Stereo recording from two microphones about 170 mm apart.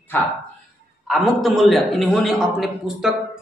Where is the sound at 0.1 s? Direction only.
10° left (ahead or behind).